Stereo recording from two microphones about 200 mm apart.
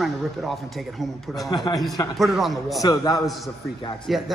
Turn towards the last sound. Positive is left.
turn(degrees=0)  # may be behind; listen again after turning